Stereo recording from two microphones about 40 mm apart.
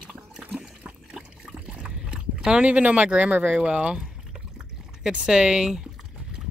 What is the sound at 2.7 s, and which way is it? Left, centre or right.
Speech, right.